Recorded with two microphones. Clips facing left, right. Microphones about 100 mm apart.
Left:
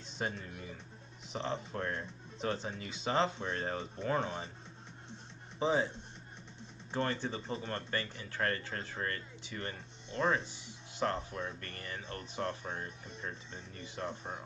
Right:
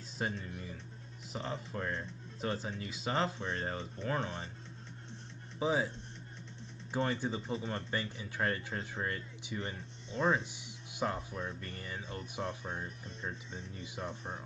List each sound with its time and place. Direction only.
0.4 s speech: 5° left (ahead or behind)
5.6 s speech: 5° right (ahead or behind)
6.9 s speech: 10° right (ahead or behind)